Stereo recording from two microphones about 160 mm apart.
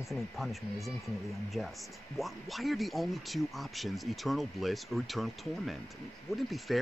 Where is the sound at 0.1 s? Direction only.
Centre (ahead or behind).